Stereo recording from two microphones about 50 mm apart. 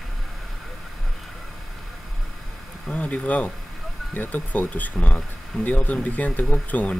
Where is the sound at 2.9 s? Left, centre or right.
Left.